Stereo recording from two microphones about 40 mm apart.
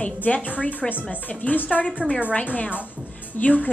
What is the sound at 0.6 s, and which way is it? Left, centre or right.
A woman's voice, left.